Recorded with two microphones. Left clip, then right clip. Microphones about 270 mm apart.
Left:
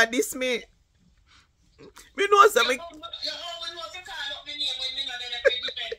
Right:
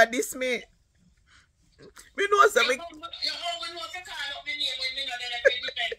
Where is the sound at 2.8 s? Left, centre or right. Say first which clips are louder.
Right 1 dB; right.